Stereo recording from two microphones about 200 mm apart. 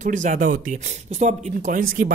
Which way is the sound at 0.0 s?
40° right (ahead or behind).